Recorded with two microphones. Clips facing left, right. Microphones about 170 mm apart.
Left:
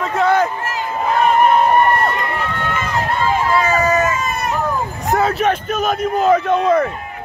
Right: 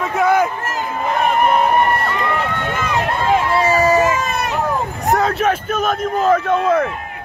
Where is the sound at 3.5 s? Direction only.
30° right (ahead or behind).